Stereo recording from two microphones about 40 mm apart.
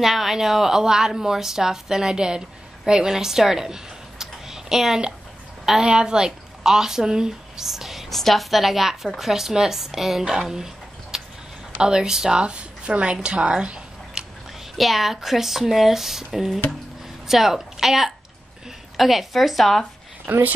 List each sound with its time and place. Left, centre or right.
0.0 s a woman's voice: centre; by 14.2 s right
14.8 s a woman's voice: centre
20.3 s speech: right